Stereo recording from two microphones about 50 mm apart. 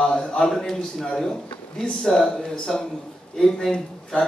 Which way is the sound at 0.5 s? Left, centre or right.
Centre.